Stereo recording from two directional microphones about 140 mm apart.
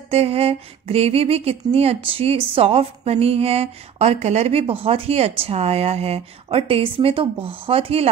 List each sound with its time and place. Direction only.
0.1 s speech: 45° right (ahead or behind)